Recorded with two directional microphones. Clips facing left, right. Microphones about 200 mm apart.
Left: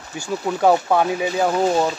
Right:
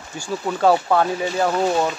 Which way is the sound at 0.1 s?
15° left (ahead or behind).